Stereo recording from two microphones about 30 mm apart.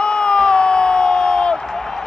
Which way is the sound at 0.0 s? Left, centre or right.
Left.